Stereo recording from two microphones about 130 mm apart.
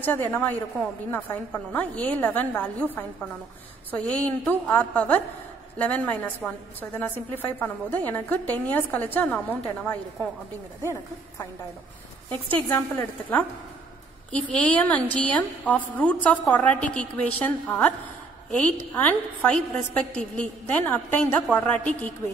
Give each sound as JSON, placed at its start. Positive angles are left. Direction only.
{"t": 0.0, "sound": "a woman's voice", "side_deg": 15}